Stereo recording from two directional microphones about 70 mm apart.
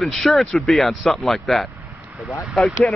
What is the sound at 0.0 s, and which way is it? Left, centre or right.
Speech, centre.